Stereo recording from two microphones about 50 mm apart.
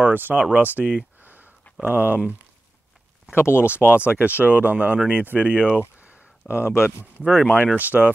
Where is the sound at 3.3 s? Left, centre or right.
Left.